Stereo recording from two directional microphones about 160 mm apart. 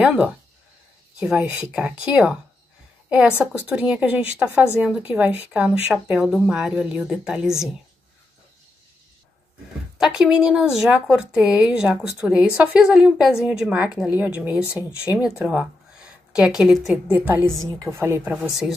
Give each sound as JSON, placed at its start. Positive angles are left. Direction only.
{"t": 0.0, "sound": "a woman's voice", "side_deg": -5}
{"t": 9.9, "sound": "a woman's voice", "side_deg": -5}